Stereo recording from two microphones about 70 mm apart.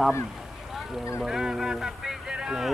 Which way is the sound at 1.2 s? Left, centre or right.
Centre.